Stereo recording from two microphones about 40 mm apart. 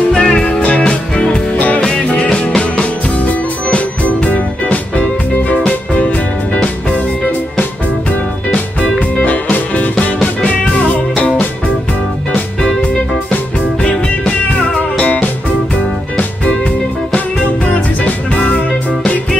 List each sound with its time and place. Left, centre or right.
0.1 s music: centre
0.5 s music: left
1.5 s music: left
2.0 s music: left
3.2 s music: left
9.1 s music: left
11.1 s music: left
15.0 s music: left
18.3 s music: left